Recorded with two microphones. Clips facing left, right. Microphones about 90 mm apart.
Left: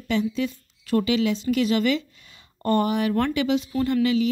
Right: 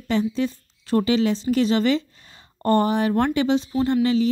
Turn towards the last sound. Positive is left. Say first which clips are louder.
# right 2 dB
turn(degrees=-35)  # may be behind; listen again after turning